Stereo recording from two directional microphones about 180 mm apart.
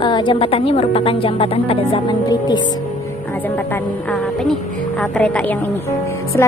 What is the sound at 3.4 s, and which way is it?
A woman's voice, 10° left (ahead or behind).